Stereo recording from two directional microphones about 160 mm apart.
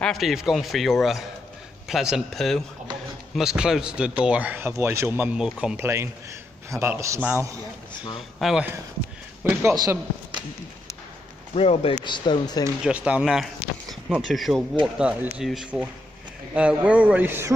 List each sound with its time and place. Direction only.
0.0 s speech: centre (ahead or behind)
6.7 s speech: 15° right (ahead or behind)
8.4 s speech: centre (ahead or behind)
9.4 s speech: 15° right (ahead or behind)
11.5 s speech: 40° left (ahead or behind)
12.8 s speech: 5° right (ahead or behind)